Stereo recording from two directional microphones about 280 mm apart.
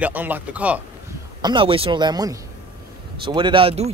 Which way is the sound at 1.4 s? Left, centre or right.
Centre.